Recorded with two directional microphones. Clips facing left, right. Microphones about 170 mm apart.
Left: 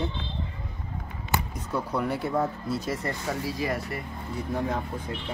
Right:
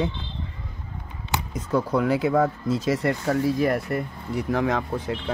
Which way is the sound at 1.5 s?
90° right.